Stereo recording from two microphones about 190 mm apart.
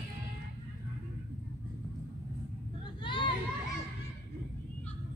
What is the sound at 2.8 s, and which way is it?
Vehicle, 25° left (ahead or behind).